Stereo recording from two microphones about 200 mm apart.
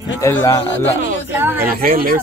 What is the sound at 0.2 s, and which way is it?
Speech, 15° left (ahead or behind).